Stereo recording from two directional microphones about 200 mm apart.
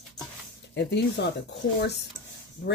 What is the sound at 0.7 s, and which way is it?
Speech, 60° left (ahead or behind).